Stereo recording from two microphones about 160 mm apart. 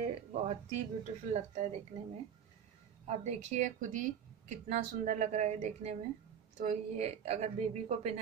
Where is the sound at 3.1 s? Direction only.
45° right (ahead or behind).